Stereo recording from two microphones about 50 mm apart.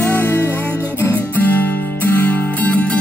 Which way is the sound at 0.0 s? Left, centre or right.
Left.